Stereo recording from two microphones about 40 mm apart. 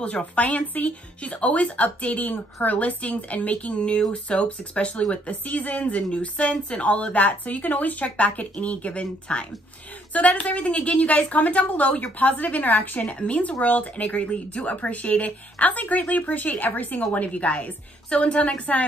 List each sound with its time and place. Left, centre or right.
0.0 s speech: left
5.3 s speech: left
13.0 s speech: left